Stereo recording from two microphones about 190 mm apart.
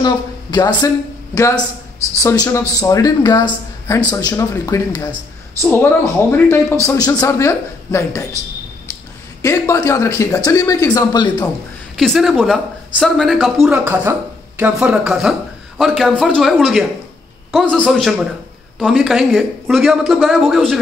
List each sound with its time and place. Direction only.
0.0 s a man's voice: 25° left (ahead or behind)
9.4 s a man's voice: 15° left (ahead or behind)
12.0 s a man's voice: centre (ahead or behind)